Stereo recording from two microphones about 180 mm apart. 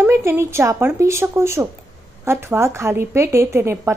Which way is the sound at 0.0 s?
15° right (ahead or behind).